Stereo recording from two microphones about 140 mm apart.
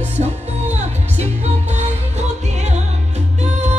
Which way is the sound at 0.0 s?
55° right (ahead or behind).